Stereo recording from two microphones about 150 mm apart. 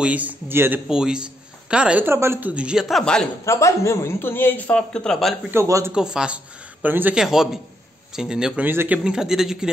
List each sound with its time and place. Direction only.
0.0 s a woman's voice: 10° right (ahead or behind)
3.4 s a man's voice: 20° left (ahead or behind); by 5.5 s 5° left (ahead or behind)
5.5 s a woman's voice: 20° right (ahead or behind)
5.9 s speech: 5° right (ahead or behind)